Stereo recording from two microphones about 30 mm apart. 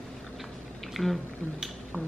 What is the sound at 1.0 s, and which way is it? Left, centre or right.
Speech, left.